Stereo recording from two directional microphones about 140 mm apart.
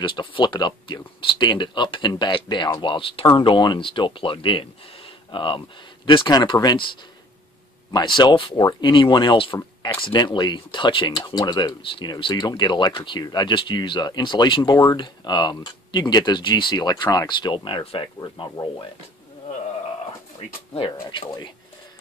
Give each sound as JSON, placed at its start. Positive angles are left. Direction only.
{"t": 0.0, "sound": "speech", "side_deg": 35}
{"t": 7.9, "sound": "speech", "side_deg": 30}
{"t": 20.3, "sound": "speech", "side_deg": 40}